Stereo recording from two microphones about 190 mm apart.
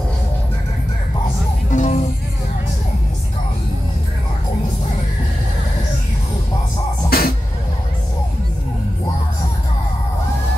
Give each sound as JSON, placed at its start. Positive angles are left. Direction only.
{"t": 1.7, "sound": "music", "side_deg": 40}
{"t": 7.1, "sound": "music", "side_deg": 50}